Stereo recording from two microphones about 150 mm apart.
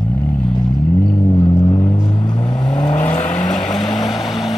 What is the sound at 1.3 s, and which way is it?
Vehicle, 25° left (ahead or behind).